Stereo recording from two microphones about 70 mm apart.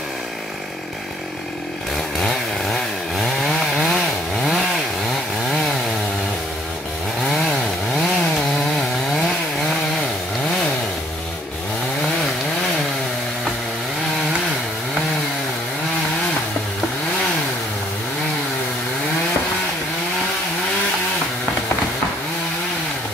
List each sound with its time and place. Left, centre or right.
2.1 s chainsaw: centre
7.2 s chainsaw: centre